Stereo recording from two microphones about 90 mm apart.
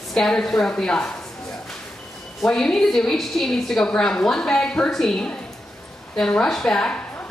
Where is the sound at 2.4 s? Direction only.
5° left (ahead or behind).